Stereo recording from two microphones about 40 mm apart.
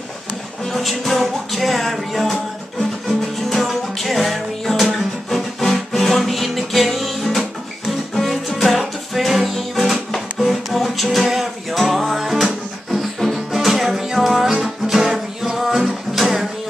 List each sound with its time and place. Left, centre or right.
0.7 s music: centre